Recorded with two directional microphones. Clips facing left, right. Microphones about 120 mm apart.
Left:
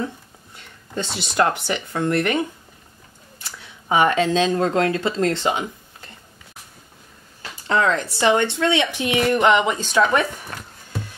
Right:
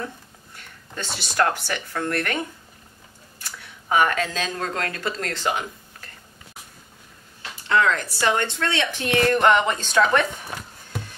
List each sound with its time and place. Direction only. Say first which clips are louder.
0.6 s speech: left 6 dB; 20° left (ahead or behind)
3.9 s speech: left 4 dB; 20° left (ahead or behind)
7.6 s a woman's voice: left 1 dB; 30° left (ahead or behind); by 10.2 s 10° left (ahead or behind)
10.5 s music: right 1 dB; 10° right (ahead or behind)